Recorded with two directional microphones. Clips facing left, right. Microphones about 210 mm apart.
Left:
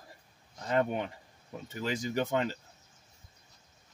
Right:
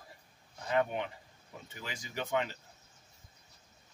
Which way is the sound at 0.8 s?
40° left (ahead or behind).